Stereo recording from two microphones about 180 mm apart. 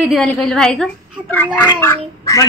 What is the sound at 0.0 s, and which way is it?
A woman's voice, centre (ahead or behind).